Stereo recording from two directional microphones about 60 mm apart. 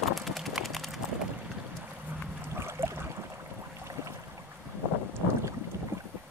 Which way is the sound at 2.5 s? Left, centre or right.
Right.